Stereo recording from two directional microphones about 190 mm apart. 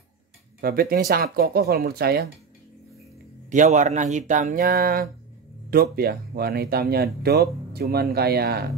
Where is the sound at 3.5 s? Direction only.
40° right (ahead or behind); by 8.7 s 55° right (ahead or behind).